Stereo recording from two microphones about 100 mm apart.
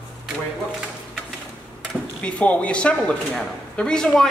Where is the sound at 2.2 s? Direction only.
10° left (ahead or behind).